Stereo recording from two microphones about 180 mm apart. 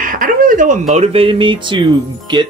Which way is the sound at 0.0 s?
50° right (ahead or behind).